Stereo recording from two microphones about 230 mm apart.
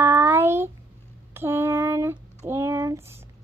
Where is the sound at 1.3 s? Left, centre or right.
Centre.